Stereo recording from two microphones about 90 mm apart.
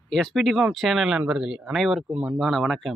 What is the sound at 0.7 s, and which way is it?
Speech, 5° right (ahead or behind).